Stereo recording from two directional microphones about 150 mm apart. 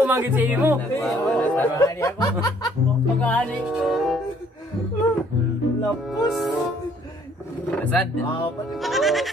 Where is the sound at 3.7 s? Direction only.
Centre (ahead or behind).